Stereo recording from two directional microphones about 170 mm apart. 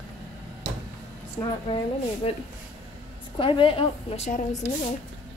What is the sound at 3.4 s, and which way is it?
Speech, 30° left (ahead or behind).